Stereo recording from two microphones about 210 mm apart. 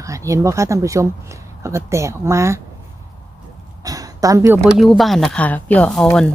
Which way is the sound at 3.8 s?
15° right (ahead or behind).